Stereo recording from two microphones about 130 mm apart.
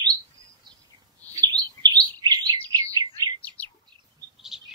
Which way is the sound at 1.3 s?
35° right (ahead or behind).